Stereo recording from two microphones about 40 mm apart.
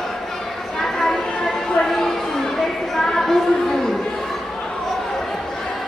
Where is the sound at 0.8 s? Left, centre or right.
Centre.